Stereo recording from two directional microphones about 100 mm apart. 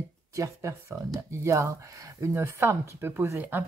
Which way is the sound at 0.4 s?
30° right (ahead or behind).